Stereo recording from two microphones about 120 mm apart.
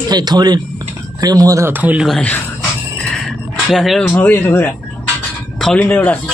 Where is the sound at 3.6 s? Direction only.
Centre (ahead or behind); by 6.2 s 15° left (ahead or behind).